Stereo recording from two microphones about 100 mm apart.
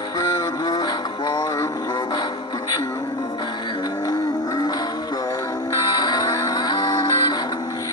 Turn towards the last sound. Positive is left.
turn(degrees=35)  # may be behind; listen again after turning